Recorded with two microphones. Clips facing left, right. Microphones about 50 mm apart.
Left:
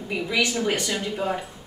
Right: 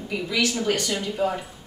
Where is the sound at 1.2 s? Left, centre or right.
Centre.